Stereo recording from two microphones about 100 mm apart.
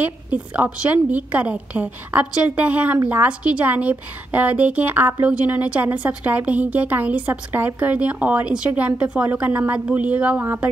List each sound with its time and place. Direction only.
0.0 s a woman's voice: 15° right (ahead or behind)